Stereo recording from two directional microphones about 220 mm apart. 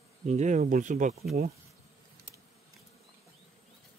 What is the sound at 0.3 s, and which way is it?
Speech, 35° right (ahead or behind).